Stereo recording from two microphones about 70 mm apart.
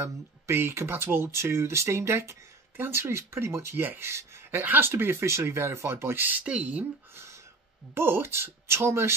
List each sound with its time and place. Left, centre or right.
0.0 s speech: right
6.4 s speech: centre
7.9 s speech: right